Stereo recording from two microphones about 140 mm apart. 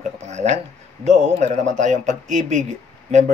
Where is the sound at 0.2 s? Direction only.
55° right (ahead or behind).